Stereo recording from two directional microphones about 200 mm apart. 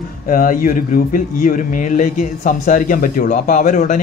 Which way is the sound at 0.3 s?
45° left (ahead or behind).